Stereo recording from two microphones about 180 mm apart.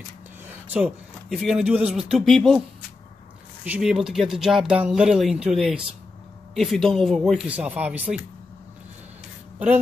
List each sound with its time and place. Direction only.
0.7 s speech: 5° right (ahead or behind)
3.6 s speech: 5° right (ahead or behind)